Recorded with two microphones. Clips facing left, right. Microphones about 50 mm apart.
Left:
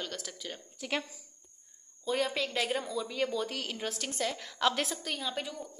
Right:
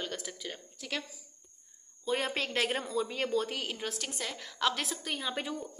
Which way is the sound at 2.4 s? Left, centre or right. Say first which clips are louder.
Even; right.